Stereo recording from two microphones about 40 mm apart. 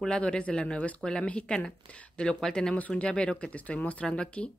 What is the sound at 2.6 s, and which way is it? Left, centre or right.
Speech, left.